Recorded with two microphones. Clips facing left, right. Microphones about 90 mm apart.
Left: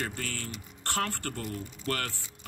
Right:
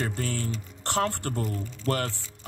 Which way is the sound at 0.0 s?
25° right (ahead or behind).